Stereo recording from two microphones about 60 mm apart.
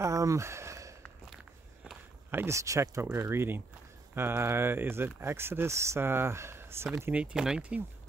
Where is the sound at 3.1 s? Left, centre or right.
Right.